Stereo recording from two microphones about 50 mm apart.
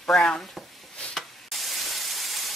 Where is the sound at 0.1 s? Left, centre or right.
Left.